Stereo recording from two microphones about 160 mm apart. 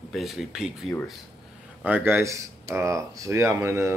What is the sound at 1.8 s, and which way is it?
Speech, 10° right (ahead or behind).